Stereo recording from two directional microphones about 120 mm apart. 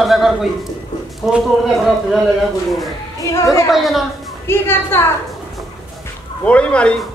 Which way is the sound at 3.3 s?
25° left (ahead or behind).